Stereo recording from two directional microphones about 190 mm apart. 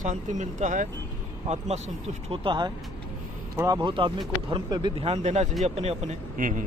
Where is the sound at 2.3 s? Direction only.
25° right (ahead or behind).